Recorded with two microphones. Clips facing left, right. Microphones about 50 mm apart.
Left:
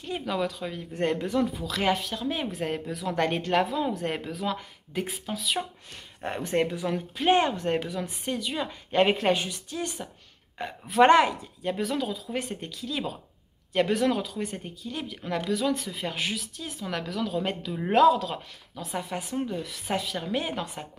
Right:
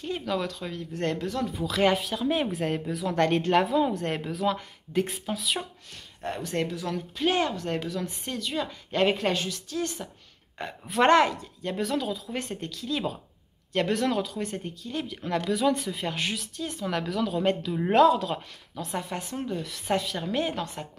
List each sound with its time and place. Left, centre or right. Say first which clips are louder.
0.1 s speech: left 1 dB; centre
1.5 s speech: right 3 dB; centre
6.2 s speech: left 3 dB; left
7.8 s speech: even; centre
10.6 s speech: left 3 dB; centre